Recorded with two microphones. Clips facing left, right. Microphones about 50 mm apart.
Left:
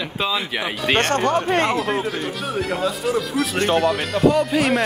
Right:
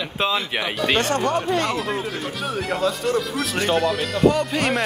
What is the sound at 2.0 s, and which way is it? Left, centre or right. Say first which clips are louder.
Speech: left 3 dB; centre.